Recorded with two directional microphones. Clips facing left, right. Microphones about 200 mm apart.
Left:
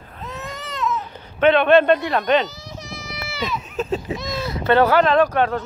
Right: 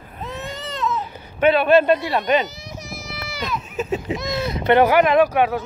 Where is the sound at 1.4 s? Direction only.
5° right (ahead or behind).